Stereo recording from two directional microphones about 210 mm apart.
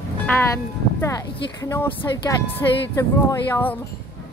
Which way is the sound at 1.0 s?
15° left (ahead or behind).